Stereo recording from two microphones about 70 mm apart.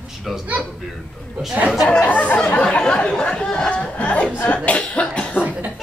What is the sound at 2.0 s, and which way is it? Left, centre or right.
Speech, left.